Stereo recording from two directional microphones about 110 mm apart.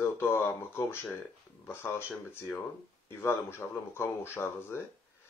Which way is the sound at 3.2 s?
20° left (ahead or behind).